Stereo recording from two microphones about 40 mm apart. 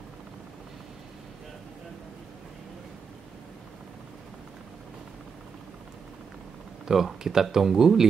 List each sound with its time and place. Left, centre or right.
6.9 s speech: centre